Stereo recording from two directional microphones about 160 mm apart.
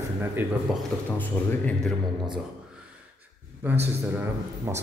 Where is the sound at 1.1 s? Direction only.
10° left (ahead or behind).